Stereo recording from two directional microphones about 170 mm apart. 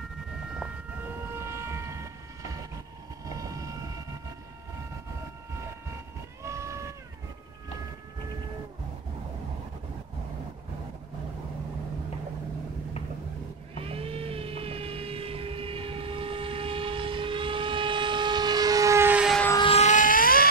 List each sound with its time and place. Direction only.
1.3 s a sound: 15° right (ahead or behind)
3.4 s vehicle: 20° right (ahead or behind)
6.4 s vehicle: 15° right (ahead or behind)
13.8 s vehicle: 35° right (ahead or behind); by 19.3 s 10° right (ahead or behind)
19.5 s vehicle: 30° left (ahead or behind)
19.8 s vehicle: 50° left (ahead or behind)